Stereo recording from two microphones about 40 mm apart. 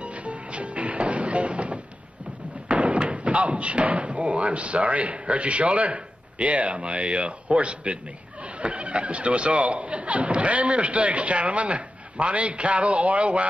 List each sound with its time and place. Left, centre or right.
0.0 s music: right
2.7 s speech: right